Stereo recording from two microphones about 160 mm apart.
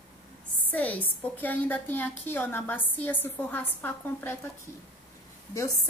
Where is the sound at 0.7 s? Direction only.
10° left (ahead or behind).